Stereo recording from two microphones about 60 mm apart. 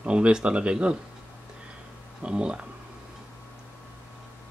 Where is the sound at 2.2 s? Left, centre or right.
Centre.